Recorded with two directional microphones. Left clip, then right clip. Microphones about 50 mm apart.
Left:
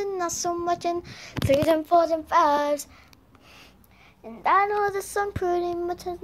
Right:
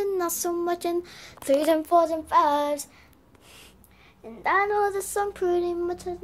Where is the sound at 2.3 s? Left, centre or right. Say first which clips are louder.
Even; left.